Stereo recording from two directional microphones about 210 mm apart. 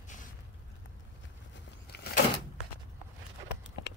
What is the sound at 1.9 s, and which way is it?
Power windows, 50° left (ahead or behind).